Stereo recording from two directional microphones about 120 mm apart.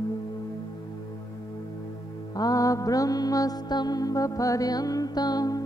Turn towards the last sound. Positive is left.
turn(degrees=35)  # may be behind; listen again after turning